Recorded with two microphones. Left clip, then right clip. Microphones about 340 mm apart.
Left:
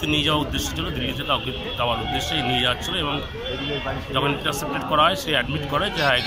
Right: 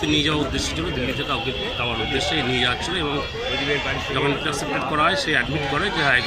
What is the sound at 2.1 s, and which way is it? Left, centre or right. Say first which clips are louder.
Speech: right 1 dB; centre.